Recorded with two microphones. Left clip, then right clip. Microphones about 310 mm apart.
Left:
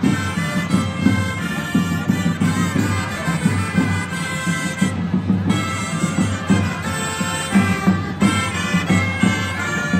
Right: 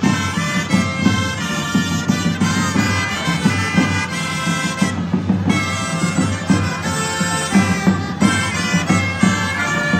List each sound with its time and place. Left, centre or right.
7.5 s music: right